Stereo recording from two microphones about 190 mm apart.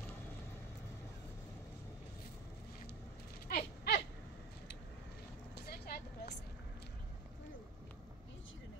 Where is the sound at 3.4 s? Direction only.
55° left (ahead or behind).